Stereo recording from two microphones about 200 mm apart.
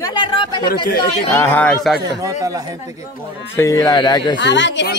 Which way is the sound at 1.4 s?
10° left (ahead or behind).